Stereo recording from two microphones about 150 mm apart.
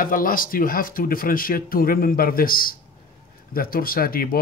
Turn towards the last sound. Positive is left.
turn(degrees=80)